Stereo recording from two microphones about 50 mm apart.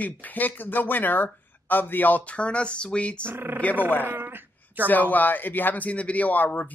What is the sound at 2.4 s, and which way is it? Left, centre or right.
Speech, left.